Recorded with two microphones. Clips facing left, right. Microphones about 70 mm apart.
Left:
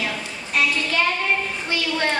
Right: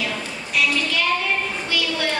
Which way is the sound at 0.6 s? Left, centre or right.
Left.